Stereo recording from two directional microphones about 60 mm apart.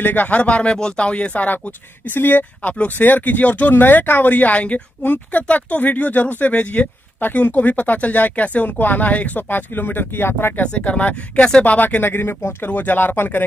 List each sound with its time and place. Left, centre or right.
0.0 s speech: left
2.0 s speech: left
10.6 s speech: left
12.7 s speech: left